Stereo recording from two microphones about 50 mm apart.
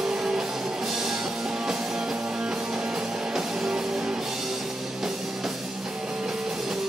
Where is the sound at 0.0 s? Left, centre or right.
Centre.